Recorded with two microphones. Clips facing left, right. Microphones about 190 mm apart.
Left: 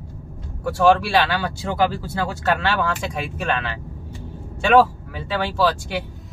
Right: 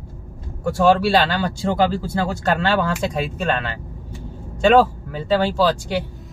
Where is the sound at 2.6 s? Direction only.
40° right (ahead or behind).